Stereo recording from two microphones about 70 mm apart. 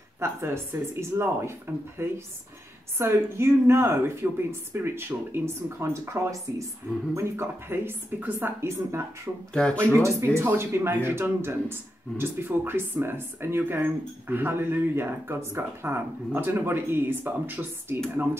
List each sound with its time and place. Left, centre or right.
0.2 s speech: right
7.2 s speech: right
9.5 s speech: centre
10.0 s speech: right